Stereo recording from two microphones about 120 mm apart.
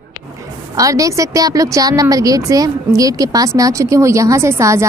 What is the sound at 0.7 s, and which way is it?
A woman's voice, 30° right (ahead or behind).